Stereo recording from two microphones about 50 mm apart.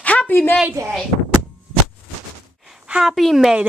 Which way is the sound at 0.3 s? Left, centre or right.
Left.